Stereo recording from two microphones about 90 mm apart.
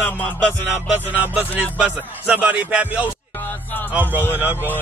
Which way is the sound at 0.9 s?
15° right (ahead or behind).